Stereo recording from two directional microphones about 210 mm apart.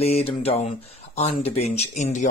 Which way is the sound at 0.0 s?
30° left (ahead or behind).